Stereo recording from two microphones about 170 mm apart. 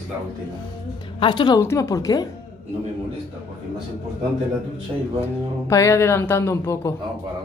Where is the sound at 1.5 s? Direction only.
20° left (ahead or behind).